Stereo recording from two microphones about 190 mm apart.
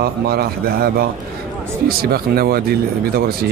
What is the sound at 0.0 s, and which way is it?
Speech, 55° right (ahead or behind).